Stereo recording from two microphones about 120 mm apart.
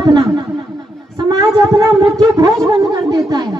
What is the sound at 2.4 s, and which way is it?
Speech, 30° right (ahead or behind).